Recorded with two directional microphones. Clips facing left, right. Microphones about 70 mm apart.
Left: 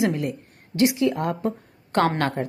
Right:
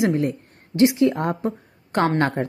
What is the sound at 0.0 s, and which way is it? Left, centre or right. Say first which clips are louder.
A woman's voice: right 3 dB; right.